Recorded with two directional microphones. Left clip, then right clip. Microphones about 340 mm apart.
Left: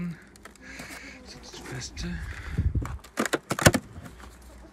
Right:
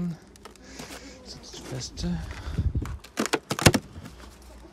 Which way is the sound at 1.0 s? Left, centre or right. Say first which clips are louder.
Even; centre.